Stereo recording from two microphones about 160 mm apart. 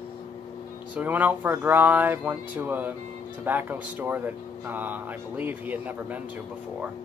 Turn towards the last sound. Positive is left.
turn(degrees=-10)  # may be behind; listen again after turning